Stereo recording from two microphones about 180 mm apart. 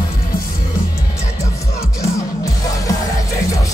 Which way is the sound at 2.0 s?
20° left (ahead or behind).